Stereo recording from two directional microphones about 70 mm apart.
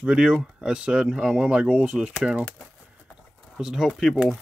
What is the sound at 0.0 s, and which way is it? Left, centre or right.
Speech, centre.